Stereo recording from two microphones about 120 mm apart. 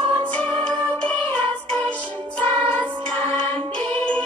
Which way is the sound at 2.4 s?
40° right (ahead or behind).